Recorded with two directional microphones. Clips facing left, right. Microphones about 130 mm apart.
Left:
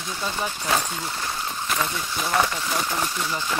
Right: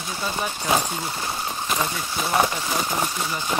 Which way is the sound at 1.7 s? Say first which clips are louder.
Right 1 dB; 15° right (ahead or behind).